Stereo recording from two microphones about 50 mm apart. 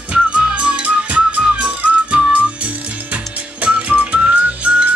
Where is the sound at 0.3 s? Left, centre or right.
Right.